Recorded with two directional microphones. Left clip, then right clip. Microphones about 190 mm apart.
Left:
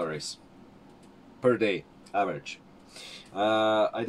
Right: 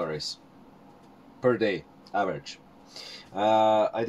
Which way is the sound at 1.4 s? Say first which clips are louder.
Even; 20° left (ahead or behind).